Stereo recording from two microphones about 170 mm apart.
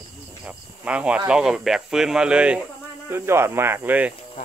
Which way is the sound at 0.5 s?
5° right (ahead or behind).